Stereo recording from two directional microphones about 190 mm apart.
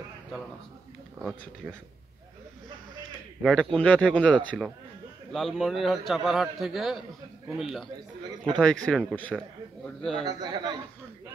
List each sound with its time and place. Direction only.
3.4 s a man's voice: 5° left (ahead or behind)
10.2 s a man's voice: 20° right (ahead or behind)